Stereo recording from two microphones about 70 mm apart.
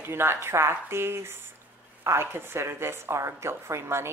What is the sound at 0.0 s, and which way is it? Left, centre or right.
Speech, right.